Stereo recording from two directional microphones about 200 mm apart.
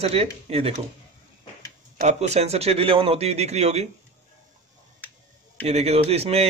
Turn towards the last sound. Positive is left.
turn(degrees=-30)  # may be behind; listen again after turning